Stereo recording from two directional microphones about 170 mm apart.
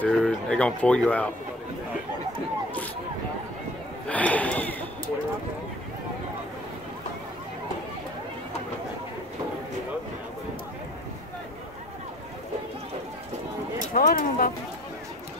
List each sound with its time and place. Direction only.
0.0 s speech: 5° left (ahead or behind)
4.1 s speech: 10° left (ahead or behind)
13.9 s speech: 55° left (ahead or behind)